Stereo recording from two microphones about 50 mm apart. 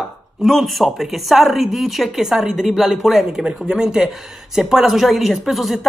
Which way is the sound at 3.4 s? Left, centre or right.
Centre.